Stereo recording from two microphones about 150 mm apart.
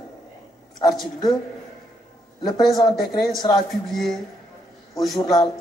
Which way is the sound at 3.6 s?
Centre (ahead or behind).